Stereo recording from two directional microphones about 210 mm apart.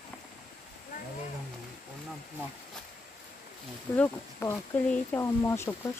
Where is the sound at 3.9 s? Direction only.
10° left (ahead or behind).